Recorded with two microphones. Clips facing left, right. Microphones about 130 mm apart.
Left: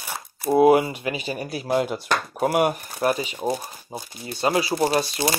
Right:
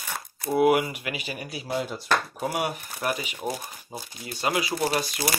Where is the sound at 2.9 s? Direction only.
30° left (ahead or behind).